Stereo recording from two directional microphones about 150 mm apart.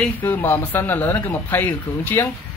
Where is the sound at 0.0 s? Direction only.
15° left (ahead or behind).